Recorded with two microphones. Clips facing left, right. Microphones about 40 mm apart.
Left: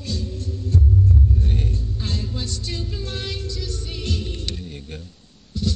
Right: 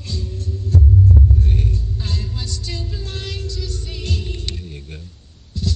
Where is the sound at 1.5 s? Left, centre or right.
Left.